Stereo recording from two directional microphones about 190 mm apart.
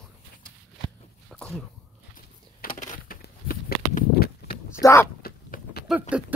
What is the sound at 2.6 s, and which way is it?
Crushing, 45° left (ahead or behind).